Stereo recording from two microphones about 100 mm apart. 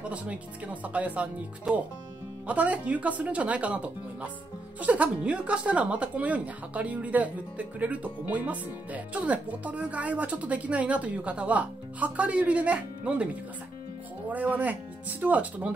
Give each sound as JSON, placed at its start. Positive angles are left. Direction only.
{"t": 0.0, "sound": "a woman's voice", "side_deg": -10}